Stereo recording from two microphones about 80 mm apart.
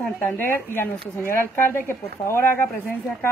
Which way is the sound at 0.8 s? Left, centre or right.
Left.